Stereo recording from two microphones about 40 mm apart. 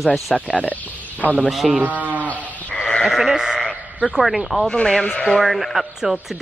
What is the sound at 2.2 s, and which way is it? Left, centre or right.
Sheep, left.